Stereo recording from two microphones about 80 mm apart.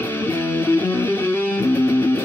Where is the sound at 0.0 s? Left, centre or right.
Left.